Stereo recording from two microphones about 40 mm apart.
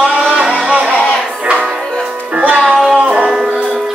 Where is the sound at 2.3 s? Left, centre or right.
Right.